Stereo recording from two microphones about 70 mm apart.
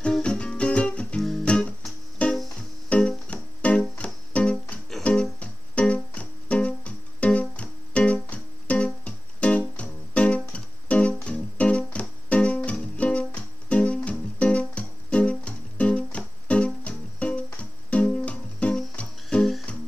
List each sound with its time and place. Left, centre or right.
0.2 s music: centre
1.4 s guitar: centre
2.9 s music: centre
19.2 s music: centre